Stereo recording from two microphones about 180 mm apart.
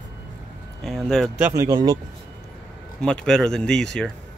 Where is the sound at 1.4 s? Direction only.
20° right (ahead or behind).